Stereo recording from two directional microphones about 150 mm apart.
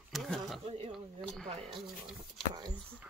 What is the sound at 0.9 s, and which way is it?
Speech, centre (ahead or behind).